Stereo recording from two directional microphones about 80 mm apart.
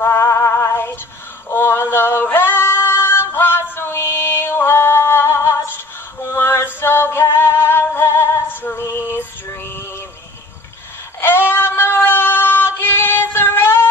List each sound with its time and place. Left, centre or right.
0.0 s female singing: left
6.2 s music: left
11.1 s female singing: left